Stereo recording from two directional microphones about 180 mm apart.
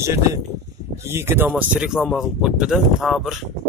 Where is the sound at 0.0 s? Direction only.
15° right (ahead or behind).